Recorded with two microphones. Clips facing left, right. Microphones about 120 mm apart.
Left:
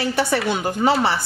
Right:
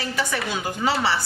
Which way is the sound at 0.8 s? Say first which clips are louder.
Left 4 dB; 55° left (ahead or behind).